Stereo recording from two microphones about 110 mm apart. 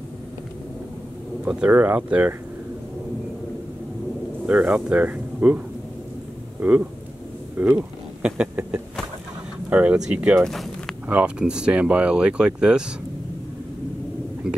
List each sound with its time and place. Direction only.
1.4 s speech: 10° right (ahead or behind)
4.5 s speech: 10° right (ahead or behind)
6.6 s speech: 15° right (ahead or behind)
7.5 s a sound: 15° right (ahead or behind)
9.7 s speech: 10° right (ahead or behind)
10.4 s a sound: 5° left (ahead or behind)
11.1 s speech: 10° right (ahead or behind)